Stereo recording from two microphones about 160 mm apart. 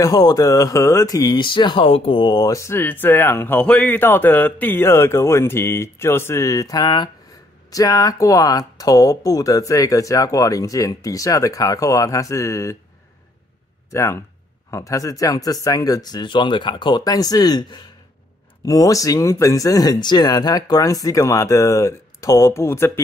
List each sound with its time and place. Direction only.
0.0 s speech: 25° left (ahead or behind)
13.8 s speech: 20° left (ahead or behind)